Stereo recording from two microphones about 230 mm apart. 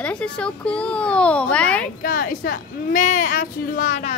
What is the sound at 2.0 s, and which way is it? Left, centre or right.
A child's voice, left.